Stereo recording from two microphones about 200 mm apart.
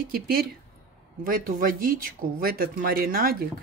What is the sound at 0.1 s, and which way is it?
Speech, 50° right (ahead or behind).